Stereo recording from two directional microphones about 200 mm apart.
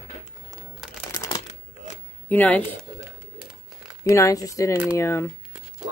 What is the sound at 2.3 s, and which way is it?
Speech, 10° left (ahead or behind).